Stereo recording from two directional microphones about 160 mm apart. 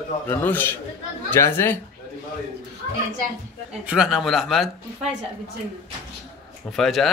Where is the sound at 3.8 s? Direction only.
5° right (ahead or behind).